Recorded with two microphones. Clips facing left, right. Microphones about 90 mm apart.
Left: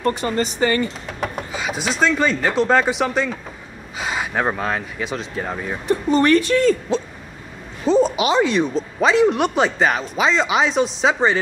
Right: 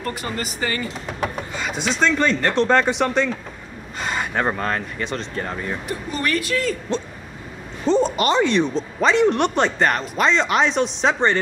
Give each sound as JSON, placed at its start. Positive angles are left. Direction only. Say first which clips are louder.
{"t": 0.0, "sound": "speech", "louder": "left 7 dB", "side_deg": 30}
{"t": 1.0, "sound": "speech", "louder": "even", "side_deg": 0}
{"t": 5.9, "sound": "speech", "louder": "left 12 dB", "side_deg": 35}
{"t": 6.9, "sound": "speech", "louder": "left 3 dB", "side_deg": 5}